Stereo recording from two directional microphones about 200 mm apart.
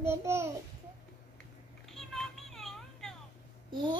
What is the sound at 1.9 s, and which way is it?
Children playing, centre (ahead or behind).